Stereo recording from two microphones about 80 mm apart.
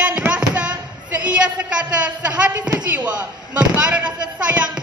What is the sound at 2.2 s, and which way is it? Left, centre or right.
Speech, centre.